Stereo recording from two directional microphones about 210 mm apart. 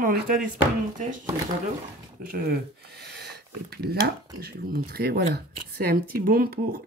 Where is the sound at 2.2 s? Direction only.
45° right (ahead or behind).